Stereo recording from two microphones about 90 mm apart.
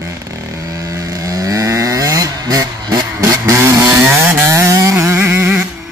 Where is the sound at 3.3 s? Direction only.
30° right (ahead or behind).